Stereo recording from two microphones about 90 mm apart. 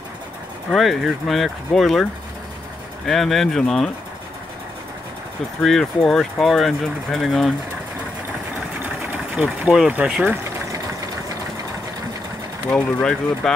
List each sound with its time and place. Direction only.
0.7 s speech: centre (ahead or behind)
3.1 s speech: centre (ahead or behind)
5.6 s speech: centre (ahead or behind)
9.8 s speech: 15° right (ahead or behind)
10.2 s a sound: 30° right (ahead or behind)
12.7 s speech: 5° left (ahead or behind)